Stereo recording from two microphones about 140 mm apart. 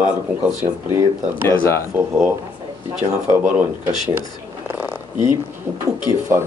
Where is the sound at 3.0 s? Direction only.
15° right (ahead or behind).